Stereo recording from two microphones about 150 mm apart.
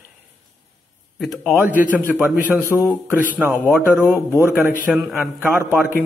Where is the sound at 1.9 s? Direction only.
10° right (ahead or behind).